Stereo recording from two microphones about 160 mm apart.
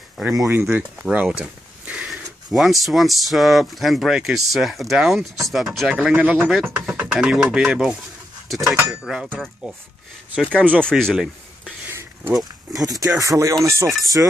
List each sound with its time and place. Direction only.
0.2 s speech: centre (ahead or behind)
0.5 s speech: 10° right (ahead or behind)
11.9 s a sound: 15° right (ahead or behind)
12.7 s music: 20° right (ahead or behind)